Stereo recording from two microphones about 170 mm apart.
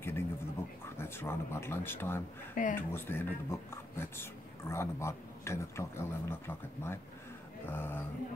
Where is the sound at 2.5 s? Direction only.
50° left (ahead or behind).